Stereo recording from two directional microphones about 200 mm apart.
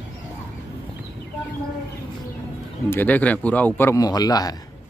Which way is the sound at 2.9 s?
10° left (ahead or behind).